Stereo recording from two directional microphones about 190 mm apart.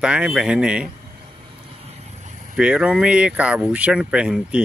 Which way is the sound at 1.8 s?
35° right (ahead or behind).